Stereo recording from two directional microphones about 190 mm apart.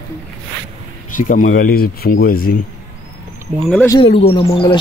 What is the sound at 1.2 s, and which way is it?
Speech, 45° left (ahead or behind).